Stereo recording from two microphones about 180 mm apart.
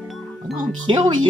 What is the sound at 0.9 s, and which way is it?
Speech, 30° right (ahead or behind).